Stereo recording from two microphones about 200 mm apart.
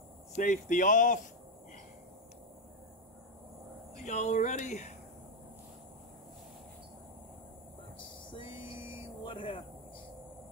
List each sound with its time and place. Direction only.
0.3 s speech: 40° left (ahead or behind)
3.9 s speech: 35° left (ahead or behind)
8.0 s a sound: 25° left (ahead or behind)